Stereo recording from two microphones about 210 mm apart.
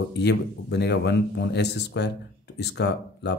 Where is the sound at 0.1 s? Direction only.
55° left (ahead or behind).